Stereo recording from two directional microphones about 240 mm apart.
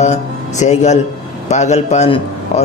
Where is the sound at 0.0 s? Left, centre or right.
Left.